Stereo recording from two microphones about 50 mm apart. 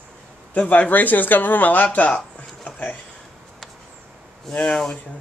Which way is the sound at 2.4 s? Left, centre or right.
Left.